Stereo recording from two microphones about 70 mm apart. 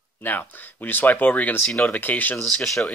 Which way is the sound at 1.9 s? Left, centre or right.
Left.